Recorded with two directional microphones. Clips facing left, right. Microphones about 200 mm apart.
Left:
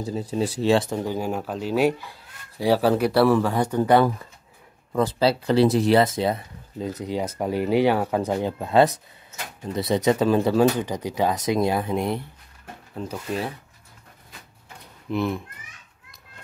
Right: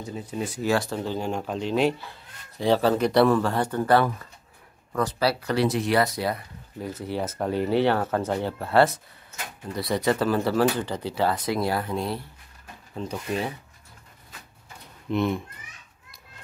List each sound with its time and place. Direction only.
0.0 s speech: 35° left (ahead or behind); by 4.0 s 15° left (ahead or behind)
4.9 s speech: 25° left (ahead or behind)
12.9 s speech: 5° left (ahead or behind)
15.0 s speech: centre (ahead or behind)